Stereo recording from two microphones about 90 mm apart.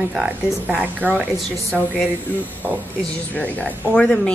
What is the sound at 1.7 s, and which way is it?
Speech, 5° left (ahead or behind).